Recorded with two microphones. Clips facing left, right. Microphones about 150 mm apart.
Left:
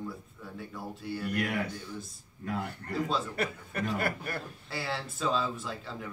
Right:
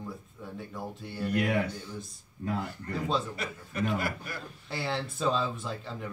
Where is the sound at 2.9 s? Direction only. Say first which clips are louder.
Right 1 dB; centre (ahead or behind).